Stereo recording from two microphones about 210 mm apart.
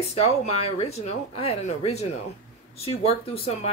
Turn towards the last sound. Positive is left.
turn(degrees=30)  # may be behind; listen again after turning